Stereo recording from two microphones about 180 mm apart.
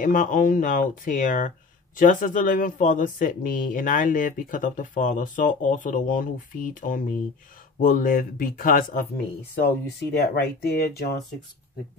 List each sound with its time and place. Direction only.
0.0 s speech: 45° left (ahead or behind)
10.1 s speech: 65° left (ahead or behind)